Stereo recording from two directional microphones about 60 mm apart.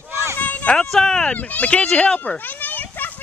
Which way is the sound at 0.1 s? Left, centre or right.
Right.